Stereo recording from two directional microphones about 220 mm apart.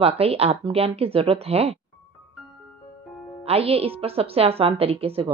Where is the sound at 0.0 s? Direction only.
25° right (ahead or behind).